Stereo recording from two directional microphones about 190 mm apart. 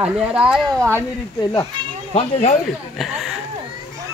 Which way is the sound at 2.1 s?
35° left (ahead or behind).